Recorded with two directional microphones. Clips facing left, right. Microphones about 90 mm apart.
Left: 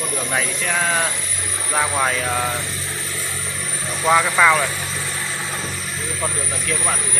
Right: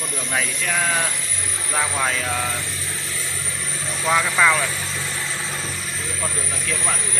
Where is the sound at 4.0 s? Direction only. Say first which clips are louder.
Left 3 dB; 10° left (ahead or behind).